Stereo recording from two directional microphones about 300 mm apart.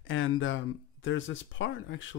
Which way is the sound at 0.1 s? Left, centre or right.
Left.